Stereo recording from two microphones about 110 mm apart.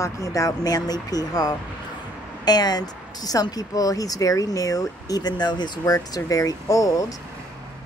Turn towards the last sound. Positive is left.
turn(degrees=30)  # may be behind; listen again after turning